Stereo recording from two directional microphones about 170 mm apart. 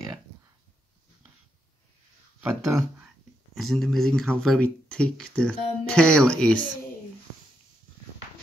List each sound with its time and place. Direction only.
2.7 s speech: 20° right (ahead or behind)
3.5 s speech: centre (ahead or behind)